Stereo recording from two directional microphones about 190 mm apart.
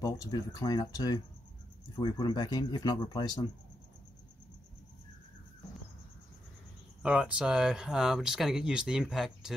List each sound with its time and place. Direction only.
0.0 s speech: 20° left (ahead or behind)
7.0 s speech: 5° right (ahead or behind)